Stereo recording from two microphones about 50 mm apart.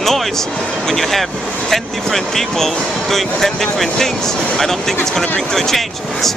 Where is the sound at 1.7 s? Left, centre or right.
Centre.